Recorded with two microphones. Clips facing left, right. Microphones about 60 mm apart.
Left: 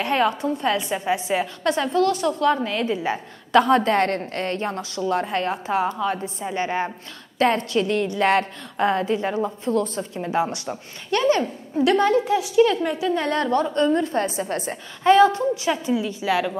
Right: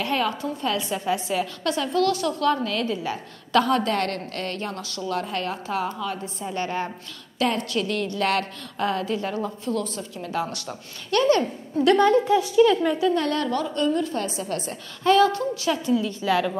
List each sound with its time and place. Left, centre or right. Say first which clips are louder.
0.0 s a woman's voice: left 4 dB; left
7.3 s a woman's voice: left 4 dB; left
11.4 s a woman's voice: even; centre
13.2 s a woman's voice: left 3 dB; left; by 16.5 s centre